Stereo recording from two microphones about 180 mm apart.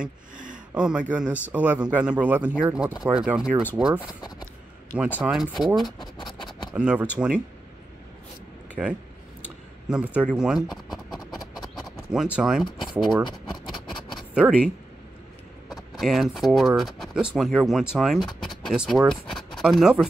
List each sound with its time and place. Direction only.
0.7 s speech: 5° right (ahead or behind)
5.2 s speech: 5° right (ahead or behind)
5.9 s speech: 25° left (ahead or behind)
6.7 s speech: 10° right (ahead or behind)
9.8 s speech: 5° right (ahead or behind)
11.1 s a sound: 20° left (ahead or behind)
12.1 s speech: 5° right (ahead or behind)
13.8 s a sound: centre (ahead or behind)
15.7 s speech: centre (ahead or behind)